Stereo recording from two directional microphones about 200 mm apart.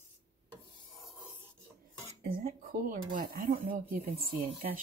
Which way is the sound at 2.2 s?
45° right (ahead or behind).